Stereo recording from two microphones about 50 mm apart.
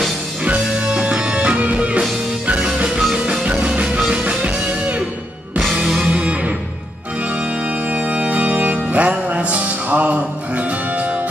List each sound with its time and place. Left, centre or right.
0.7 s music: centre
6.0 s music: right
7.9 s music: right